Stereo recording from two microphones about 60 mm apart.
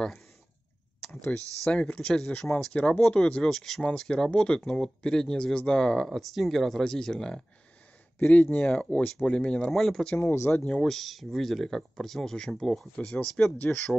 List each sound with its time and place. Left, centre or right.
1.6 s speech: centre
3.4 s speech: centre
6.0 s speech: centre
8.2 s speech: left
9.7 s speech: centre
10.1 s speech: left
10.8 s speech: centre